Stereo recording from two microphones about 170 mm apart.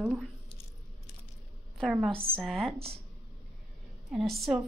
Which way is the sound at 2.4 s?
Centre (ahead or behind).